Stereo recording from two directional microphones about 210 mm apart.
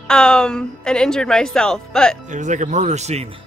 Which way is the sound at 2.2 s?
35° right (ahead or behind).